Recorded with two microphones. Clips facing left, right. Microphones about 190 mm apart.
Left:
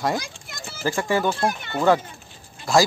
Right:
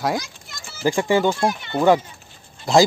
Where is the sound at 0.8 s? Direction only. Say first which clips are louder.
Right 4 dB; 15° right (ahead or behind).